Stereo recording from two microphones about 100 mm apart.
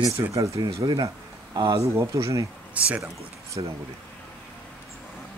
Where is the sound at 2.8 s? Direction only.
15° right (ahead or behind).